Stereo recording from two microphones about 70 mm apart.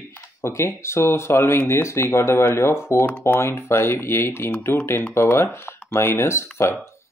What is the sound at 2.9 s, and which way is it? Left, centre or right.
Speech, left.